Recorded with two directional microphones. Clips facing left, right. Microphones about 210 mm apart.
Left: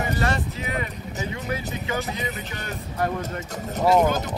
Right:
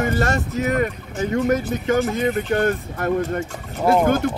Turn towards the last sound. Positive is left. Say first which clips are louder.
# right 3 dB
turn(degrees=-55)  # may be behind; listen again after turning